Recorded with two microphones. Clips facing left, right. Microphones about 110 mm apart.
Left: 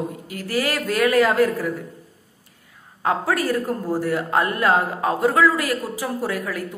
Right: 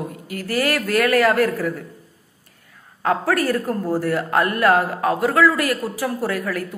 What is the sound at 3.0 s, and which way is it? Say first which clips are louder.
Speech: right 2 dB; 15° left (ahead or behind).